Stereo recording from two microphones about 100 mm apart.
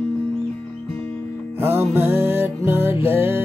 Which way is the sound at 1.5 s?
20° right (ahead or behind).